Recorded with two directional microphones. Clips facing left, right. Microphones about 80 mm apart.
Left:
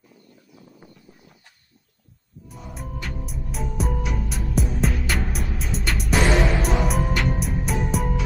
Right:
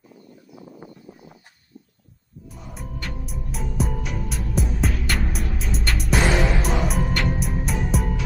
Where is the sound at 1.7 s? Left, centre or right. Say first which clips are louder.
Right 15 dB; right.